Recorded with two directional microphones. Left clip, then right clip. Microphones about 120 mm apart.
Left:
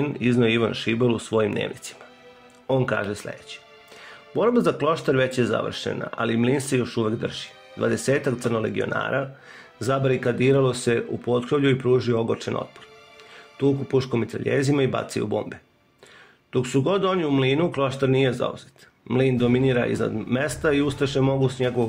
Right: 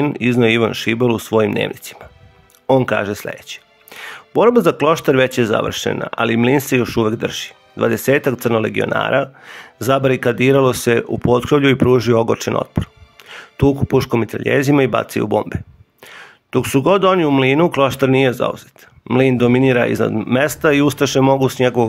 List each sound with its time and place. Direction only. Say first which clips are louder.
0.0 s speech: right 7 dB; 30° right (ahead or behind)
6.8 s speech: right 8 dB; 50° right (ahead or behind)
18.1 s speech: right 7 dB; 30° right (ahead or behind); by 21.6 s 50° right (ahead or behind)